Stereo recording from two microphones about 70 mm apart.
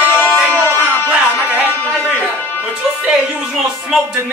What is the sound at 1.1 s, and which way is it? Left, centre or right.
Music, right.